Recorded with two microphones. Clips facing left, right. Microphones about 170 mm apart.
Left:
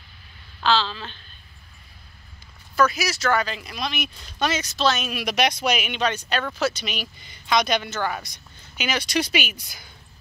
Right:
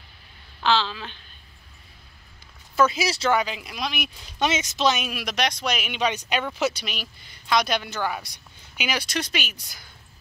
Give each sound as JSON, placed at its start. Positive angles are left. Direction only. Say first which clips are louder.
{"t": 0.6, "sound": "speech", "louder": "left 1 dB", "side_deg": -15}
{"t": 2.7, "sound": "speech", "louder": "even", "side_deg": -25}
{"t": 3.3, "sound": "speech", "louder": "left 1 dB", "side_deg": -15}
{"t": 4.5, "sound": "speech", "louder": "even", "side_deg": -20}
{"t": 5.1, "sound": "speech", "louder": "left 3 dB", "side_deg": 5}
{"t": 5.9, "sound": "speech", "louder": "even", "side_deg": -10}